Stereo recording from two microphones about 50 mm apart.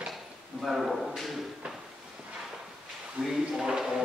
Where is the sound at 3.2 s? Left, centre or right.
Centre.